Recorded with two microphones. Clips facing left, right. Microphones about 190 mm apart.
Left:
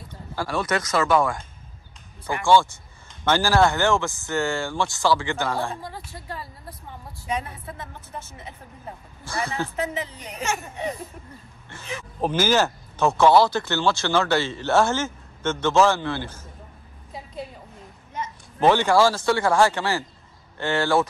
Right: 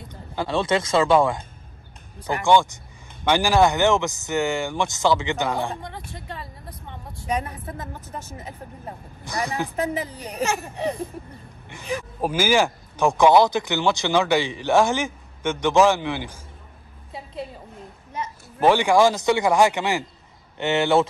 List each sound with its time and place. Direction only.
0.1 s speech: 20° right (ahead or behind)
2.4 s speech: 15° right (ahead or behind)
5.8 s speech: 5° left (ahead or behind)
6.1 s speech: 25° right (ahead or behind)
6.7 s speech: centre (ahead or behind)
7.4 s a woman's voice: 40° right (ahead or behind)
9.2 s speech: 15° right (ahead or behind)
9.8 s a woman's voice: 35° right (ahead or behind)
12.2 s speech: 10° right (ahead or behind)
18.6 s speech: 10° right (ahead or behind)